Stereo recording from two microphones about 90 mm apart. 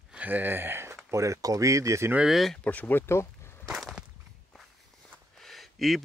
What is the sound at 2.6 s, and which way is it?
Speech, 20° left (ahead or behind).